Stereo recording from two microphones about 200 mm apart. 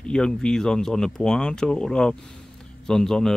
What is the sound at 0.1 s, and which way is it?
Speech, 5° left (ahead or behind).